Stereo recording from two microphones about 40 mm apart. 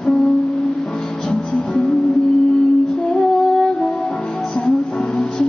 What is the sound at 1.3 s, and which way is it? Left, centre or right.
Music, centre.